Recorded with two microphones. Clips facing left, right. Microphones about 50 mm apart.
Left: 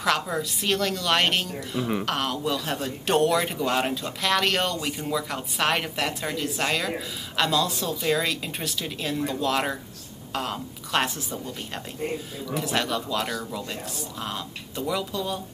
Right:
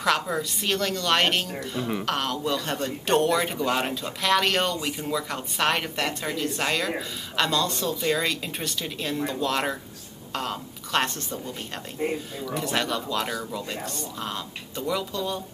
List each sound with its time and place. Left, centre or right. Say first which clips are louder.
0.0 s a woman's voice: even; centre
12.0 s speech: right 3 dB; right
12.4 s a woman's voice: even; centre